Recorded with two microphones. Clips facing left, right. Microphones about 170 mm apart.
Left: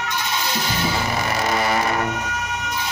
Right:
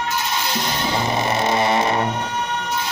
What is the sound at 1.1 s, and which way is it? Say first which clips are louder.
Music: right 3 dB; 25° right (ahead or behind).